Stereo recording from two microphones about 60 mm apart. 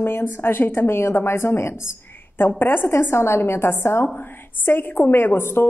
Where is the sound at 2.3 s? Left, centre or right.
Left.